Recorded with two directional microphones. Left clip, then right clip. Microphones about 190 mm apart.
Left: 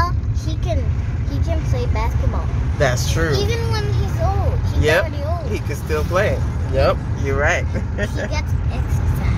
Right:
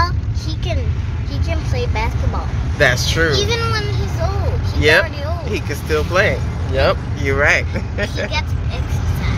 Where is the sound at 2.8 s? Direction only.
Centre (ahead or behind).